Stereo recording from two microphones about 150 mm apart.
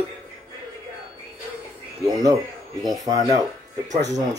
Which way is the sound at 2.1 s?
25° right (ahead or behind).